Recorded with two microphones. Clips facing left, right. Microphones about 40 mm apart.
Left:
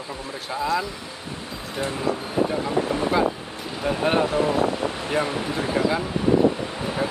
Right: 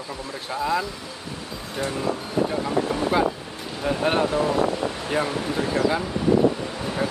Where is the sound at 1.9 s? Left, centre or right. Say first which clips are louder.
Left 1 dB; centre.